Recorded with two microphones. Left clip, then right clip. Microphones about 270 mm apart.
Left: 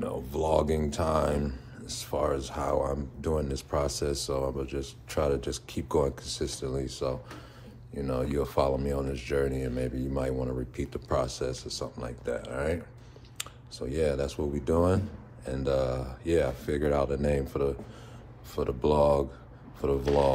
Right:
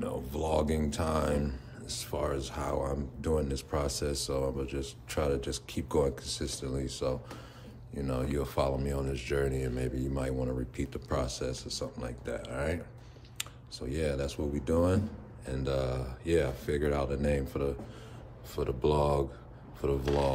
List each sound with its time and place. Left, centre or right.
0.0 s speech: centre